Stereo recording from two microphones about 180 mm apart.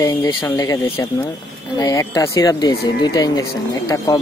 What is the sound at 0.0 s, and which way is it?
A woman's voice, 15° left (ahead or behind).